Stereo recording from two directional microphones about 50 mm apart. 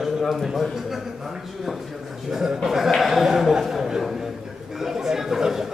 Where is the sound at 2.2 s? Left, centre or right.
Centre.